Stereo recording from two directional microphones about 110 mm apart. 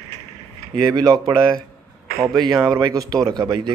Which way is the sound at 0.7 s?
35° right (ahead or behind).